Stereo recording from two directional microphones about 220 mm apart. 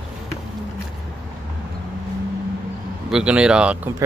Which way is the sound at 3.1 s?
5° right (ahead or behind).